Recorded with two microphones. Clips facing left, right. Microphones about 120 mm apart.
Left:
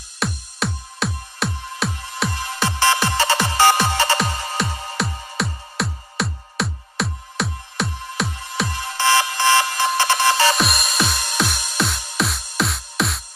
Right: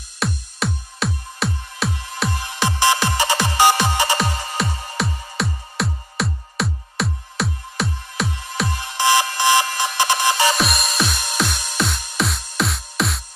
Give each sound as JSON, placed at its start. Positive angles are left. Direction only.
{"t": 0.2, "sound": "music", "side_deg": 0}
{"t": 2.6, "sound": "music", "side_deg": -15}
{"t": 4.6, "sound": "music", "side_deg": 0}
{"t": 8.9, "sound": "music", "side_deg": -15}
{"t": 10.5, "sound": "music", "side_deg": 0}